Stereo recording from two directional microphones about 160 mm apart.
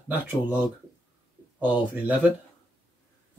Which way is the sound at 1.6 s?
10° right (ahead or behind).